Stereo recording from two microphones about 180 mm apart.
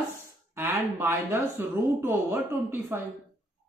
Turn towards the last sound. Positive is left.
turn(degrees=-10)  # may be behind; listen again after turning